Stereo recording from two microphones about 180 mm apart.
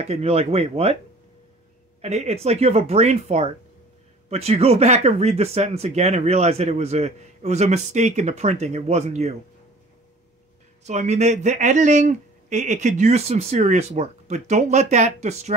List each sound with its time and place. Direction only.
0.0 s speech: 35° right (ahead or behind)
2.0 s speech: 35° right (ahead or behind)
10.8 s speech: 40° right (ahead or behind)